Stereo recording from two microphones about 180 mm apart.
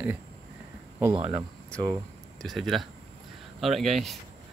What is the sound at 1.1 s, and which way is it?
Speech, 30° right (ahead or behind).